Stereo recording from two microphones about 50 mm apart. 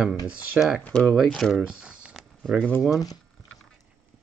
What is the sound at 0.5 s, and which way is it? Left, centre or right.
Speech, centre.